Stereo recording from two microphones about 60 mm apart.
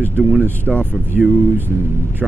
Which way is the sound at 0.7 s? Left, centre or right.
Centre.